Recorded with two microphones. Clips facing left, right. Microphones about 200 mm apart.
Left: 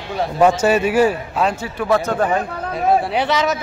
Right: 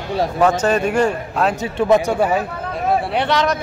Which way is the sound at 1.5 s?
20° right (ahead or behind).